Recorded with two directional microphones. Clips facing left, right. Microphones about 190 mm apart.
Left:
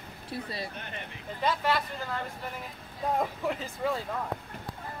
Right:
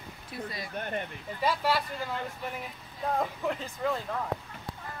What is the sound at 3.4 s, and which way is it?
Speech, centre (ahead or behind).